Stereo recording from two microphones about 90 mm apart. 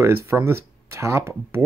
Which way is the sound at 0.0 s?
30° right (ahead or behind).